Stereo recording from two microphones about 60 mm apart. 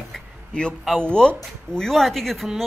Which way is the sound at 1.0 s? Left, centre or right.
Centre.